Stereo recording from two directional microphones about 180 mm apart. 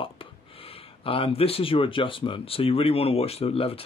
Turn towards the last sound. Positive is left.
turn(degrees=30)  # may be behind; listen again after turning